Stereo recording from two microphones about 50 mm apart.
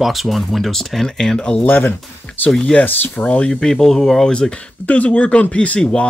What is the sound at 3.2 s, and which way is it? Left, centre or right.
Speech, left.